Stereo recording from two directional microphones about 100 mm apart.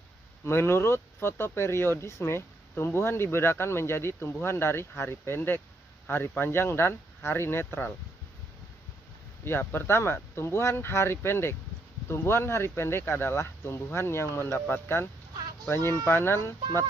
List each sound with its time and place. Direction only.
0.5 s speech: 25° left (ahead or behind)
9.4 s speech: 25° left (ahead or behind)